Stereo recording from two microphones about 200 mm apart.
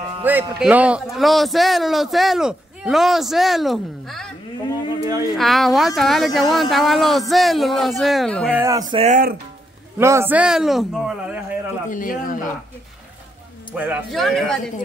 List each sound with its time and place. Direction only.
0.2 s speech: 10° right (ahead or behind)
5.0 s a sound: 15° right (ahead or behind)
5.3 s speech: centre (ahead or behind)
8.5 s a sound: 15° right (ahead or behind)
8.9 s speech: 35° right (ahead or behind)
9.9 s a man's voice: 15° right (ahead or behind)
11.9 s speech: 45° left (ahead or behind)
13.7 s speech: 5° right (ahead or behind)